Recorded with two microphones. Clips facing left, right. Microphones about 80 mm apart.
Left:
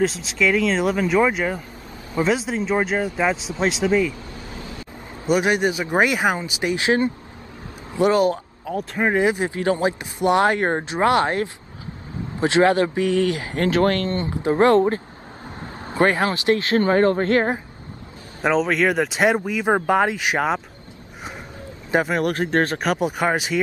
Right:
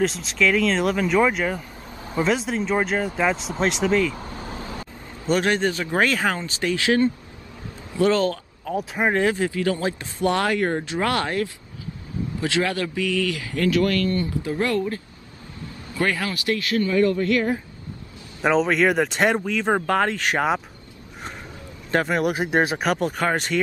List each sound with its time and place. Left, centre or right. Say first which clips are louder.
0.0 s speech: left 1 dB; centre
4.2 s a sound: right 2 dB; right
5.3 s speech: left 2 dB; centre
8.7 s speech: left 1 dB; centre
9.1 s a man's voice: left 2 dB; centre; by 17.6 s left
18.4 s speech: even; centre
21.9 s speech: left 1 dB; centre